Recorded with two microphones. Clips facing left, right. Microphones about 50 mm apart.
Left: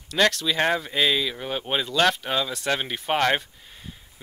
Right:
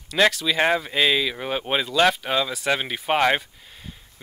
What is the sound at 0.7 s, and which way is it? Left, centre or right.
Speech, centre.